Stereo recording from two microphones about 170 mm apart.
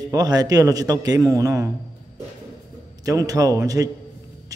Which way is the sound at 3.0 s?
20° right (ahead or behind).